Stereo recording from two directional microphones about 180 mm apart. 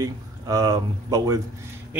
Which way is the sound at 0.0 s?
20° right (ahead or behind).